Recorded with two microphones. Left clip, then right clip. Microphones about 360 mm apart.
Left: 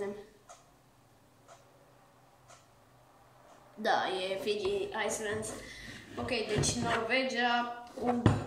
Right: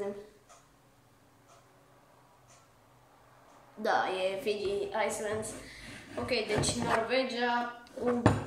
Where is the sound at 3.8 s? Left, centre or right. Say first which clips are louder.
Right 1 dB; centre.